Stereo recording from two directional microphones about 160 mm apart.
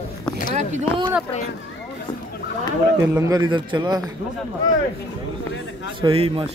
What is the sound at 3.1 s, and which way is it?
Speech, 20° right (ahead or behind).